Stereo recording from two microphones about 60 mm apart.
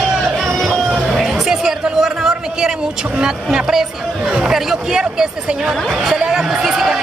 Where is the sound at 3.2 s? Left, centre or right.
Centre.